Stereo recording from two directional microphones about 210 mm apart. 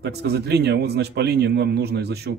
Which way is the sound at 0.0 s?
50° right (ahead or behind).